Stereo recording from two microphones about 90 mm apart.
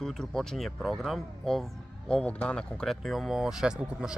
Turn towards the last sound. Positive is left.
turn(degrees=-10)  # may be behind; listen again after turning